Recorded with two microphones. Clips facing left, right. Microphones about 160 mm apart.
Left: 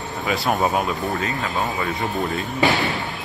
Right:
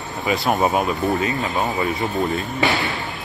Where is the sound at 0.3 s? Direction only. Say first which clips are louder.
Right 2 dB; centre (ahead or behind).